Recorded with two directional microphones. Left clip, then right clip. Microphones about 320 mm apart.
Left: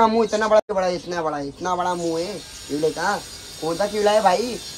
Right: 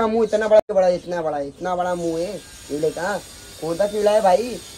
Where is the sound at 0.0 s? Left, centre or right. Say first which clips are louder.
Left 1 dB; centre.